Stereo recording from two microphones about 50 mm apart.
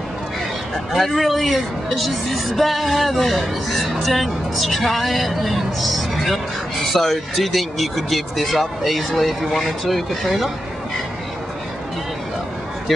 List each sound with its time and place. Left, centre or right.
0.9 s speech: centre